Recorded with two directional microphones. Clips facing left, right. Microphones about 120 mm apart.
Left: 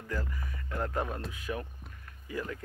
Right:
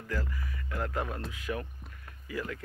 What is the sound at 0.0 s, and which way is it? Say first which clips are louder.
Speech: right 1 dB; 20° left (ahead or behind).